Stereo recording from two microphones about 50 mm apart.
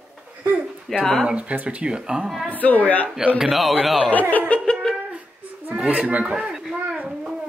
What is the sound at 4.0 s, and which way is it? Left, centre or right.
Speech, left.